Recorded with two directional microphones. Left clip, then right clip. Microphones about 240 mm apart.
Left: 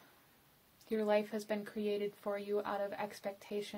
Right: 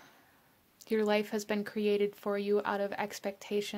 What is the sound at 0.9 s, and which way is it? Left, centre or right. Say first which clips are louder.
Speech: right 4 dB; right.